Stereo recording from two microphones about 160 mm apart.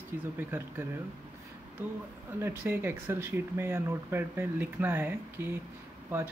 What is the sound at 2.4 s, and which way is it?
Speech, 15° right (ahead or behind).